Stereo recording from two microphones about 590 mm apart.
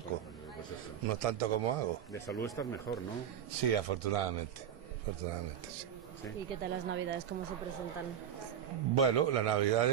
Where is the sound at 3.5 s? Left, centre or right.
Right.